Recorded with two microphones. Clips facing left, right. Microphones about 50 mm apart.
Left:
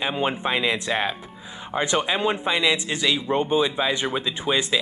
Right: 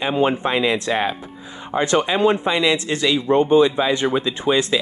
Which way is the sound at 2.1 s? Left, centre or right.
Centre.